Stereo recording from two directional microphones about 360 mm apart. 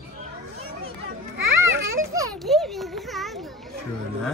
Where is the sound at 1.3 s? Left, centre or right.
Right.